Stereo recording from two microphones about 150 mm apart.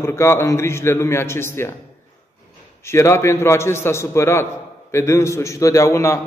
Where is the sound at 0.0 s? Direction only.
15° left (ahead or behind).